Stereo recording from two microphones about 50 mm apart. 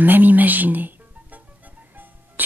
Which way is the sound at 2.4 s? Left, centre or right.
Right.